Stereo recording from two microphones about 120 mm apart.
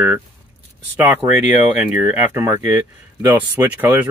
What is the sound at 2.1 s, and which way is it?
Speech, 20° right (ahead or behind).